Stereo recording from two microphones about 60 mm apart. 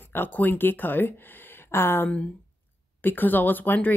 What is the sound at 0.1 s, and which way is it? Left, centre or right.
Speech, left.